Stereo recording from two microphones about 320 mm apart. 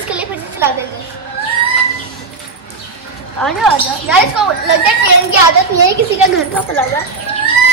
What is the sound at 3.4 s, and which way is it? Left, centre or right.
Speech, centre.